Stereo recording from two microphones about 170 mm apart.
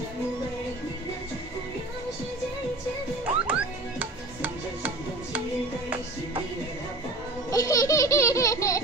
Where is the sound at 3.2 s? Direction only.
10° right (ahead or behind).